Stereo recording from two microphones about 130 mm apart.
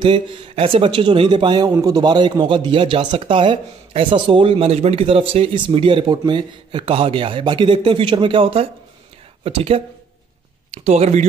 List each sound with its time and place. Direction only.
0.0 s speech: 40° right (ahead or behind)
10.7 s speech: 60° right (ahead or behind)